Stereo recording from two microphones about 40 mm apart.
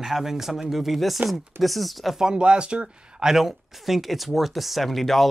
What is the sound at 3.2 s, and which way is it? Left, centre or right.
Speech, centre.